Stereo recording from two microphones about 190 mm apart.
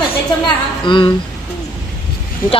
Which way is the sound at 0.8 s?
25° left (ahead or behind).